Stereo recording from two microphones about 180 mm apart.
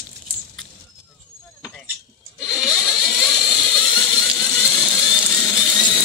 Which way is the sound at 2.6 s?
Centre (ahead or behind).